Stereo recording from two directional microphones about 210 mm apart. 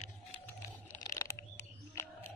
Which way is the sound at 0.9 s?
10° left (ahead or behind).